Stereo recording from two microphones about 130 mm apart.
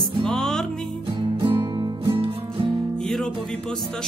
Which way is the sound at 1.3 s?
35° right (ahead or behind).